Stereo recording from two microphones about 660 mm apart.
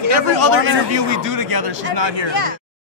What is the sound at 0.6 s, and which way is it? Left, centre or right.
A man's voice, right.